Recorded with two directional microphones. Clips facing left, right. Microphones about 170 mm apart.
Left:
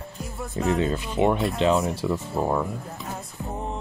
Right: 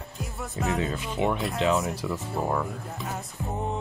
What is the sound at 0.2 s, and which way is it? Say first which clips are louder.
Music: left 3 dB; centre (ahead or behind).